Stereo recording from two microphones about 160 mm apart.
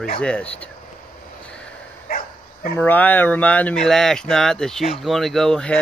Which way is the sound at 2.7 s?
10° left (ahead or behind).